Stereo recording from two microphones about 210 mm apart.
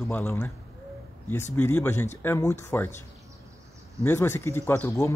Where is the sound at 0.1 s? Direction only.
10° left (ahead or behind).